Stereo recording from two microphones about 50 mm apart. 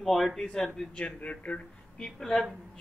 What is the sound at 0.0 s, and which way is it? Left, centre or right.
Speech, centre.